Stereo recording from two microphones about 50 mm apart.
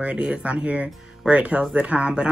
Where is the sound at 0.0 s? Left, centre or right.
Right.